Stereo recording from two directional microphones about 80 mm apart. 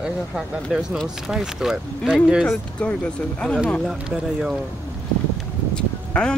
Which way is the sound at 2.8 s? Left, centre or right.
Centre.